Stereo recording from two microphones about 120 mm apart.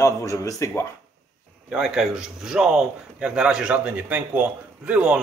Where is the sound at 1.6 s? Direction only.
5° right (ahead or behind).